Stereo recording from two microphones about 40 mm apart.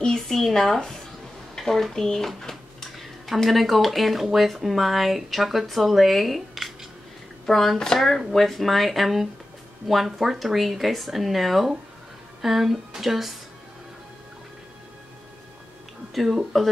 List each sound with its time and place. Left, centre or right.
0.3 s speech: centre
7.4 s speech: centre
16.2 s speech: centre